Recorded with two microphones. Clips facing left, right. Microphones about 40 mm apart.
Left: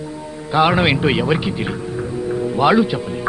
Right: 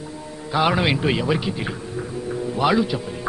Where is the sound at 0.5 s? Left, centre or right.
Left.